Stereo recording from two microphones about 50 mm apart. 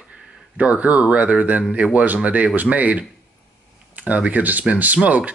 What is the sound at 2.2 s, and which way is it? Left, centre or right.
Speech, right.